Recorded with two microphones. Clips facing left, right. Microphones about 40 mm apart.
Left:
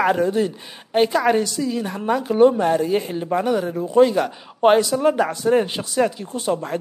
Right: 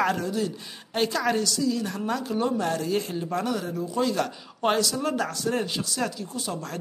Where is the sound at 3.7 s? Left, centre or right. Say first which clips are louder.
Left 11 dB; left.